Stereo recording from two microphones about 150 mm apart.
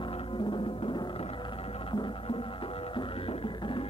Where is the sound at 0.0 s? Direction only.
35° left (ahead or behind).